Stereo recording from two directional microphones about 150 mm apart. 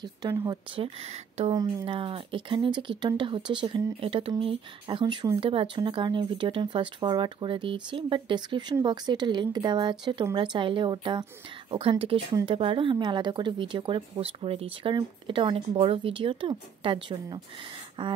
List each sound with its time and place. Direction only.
0.0 s speech: 25° right (ahead or behind)
0.7 s speech: 40° right (ahead or behind)
1.5 s speech: 25° right (ahead or behind)
1.9 s speech: 35° right (ahead or behind)